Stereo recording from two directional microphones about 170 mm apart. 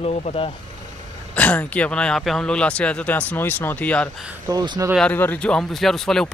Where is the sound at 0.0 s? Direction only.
35° left (ahead or behind).